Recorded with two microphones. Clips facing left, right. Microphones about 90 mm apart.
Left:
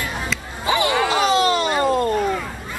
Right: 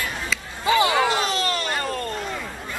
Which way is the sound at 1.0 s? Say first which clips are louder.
Left 6 dB; 20° left (ahead or behind).